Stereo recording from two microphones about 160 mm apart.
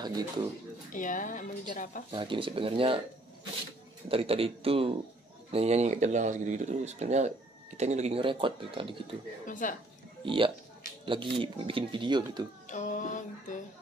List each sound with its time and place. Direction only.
0.9 s a woman's voice: 55° left (ahead or behind)
2.1 s speech: 30° right (ahead or behind)
4.1 s speech: 35° right (ahead or behind)
9.5 s a woman's voice: 55° left (ahead or behind)
10.2 s speech: 30° right (ahead or behind)
12.6 s a sound: 50° left (ahead or behind)